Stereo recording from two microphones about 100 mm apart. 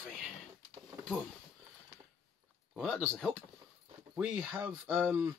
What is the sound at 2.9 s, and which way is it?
Speech, 15° left (ahead or behind).